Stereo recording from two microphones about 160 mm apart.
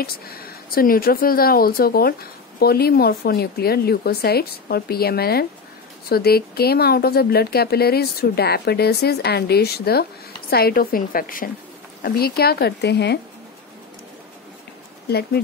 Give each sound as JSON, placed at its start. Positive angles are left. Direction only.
{"t": 0.0, "sound": "a woman's voice", "side_deg": 70}
{"t": 12.0, "sound": "speech", "side_deg": 75}
{"t": 15.0, "sound": "speech", "side_deg": 80}